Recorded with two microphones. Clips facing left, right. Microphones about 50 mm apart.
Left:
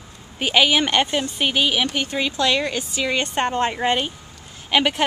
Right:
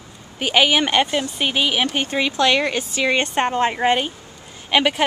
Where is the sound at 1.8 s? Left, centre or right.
Right.